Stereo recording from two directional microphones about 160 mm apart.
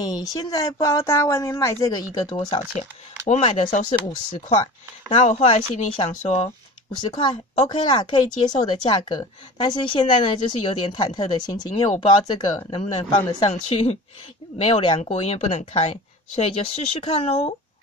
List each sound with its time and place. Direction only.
0.0 s speech: 20° left (ahead or behind)
3.3 s speech: 40° left (ahead or behind)
5.1 s speech: 45° left (ahead or behind)
7.0 s speech: 30° left (ahead or behind)
13.5 s speech: 40° left (ahead or behind)